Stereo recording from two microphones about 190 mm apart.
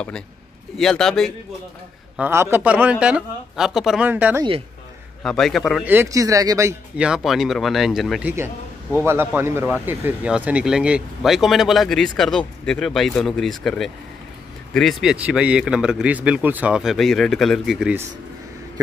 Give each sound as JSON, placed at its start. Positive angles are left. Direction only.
{"t": 0.7, "sound": "speech", "side_deg": 0}
{"t": 2.1, "sound": "speech", "side_deg": -10}
{"t": 5.2, "sound": "speech", "side_deg": 0}
{"t": 5.9, "sound": "speech", "side_deg": -15}
{"t": 7.1, "sound": "speech", "side_deg": 0}
{"t": 8.9, "sound": "speech", "side_deg": -10}